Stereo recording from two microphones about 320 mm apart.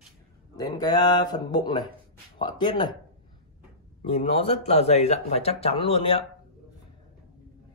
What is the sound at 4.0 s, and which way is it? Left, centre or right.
Speech, left.